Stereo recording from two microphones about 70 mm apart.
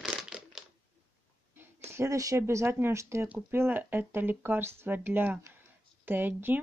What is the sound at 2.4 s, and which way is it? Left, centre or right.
Speech, right.